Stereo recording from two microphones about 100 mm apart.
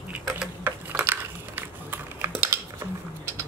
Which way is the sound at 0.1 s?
15° right (ahead or behind).